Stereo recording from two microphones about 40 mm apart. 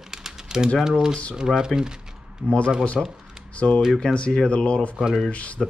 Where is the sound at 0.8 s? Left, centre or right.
Centre.